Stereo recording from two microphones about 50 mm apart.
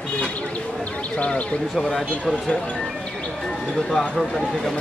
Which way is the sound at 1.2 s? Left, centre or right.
Left.